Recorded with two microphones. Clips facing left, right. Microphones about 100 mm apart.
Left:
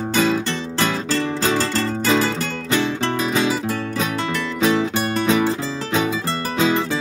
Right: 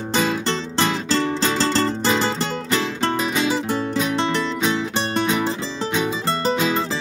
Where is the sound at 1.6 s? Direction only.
30° right (ahead or behind).